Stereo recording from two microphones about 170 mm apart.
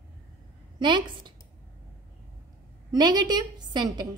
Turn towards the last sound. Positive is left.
turn(degrees=-25)  # may be behind; listen again after turning